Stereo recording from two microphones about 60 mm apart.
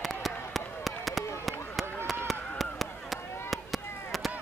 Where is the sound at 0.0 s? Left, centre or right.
Centre.